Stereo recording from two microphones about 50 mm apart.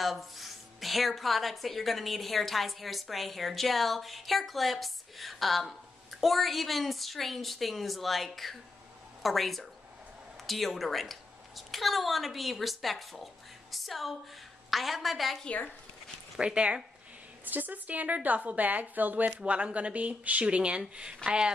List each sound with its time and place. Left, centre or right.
0.0 s a woman's voice: centre
16.3 s speech: right
17.5 s a woman's voice: right; by 21.5 s centre